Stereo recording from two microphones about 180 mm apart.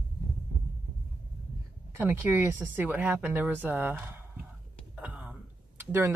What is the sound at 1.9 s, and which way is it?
Speech, 15° right (ahead or behind).